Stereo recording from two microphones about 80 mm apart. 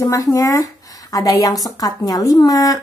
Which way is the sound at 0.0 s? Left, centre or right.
Left.